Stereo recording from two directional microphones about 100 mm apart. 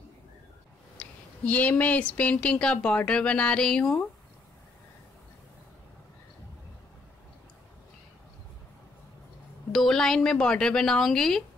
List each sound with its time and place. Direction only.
0.9 s speech: 10° left (ahead or behind)
9.7 s speech: 5° left (ahead or behind)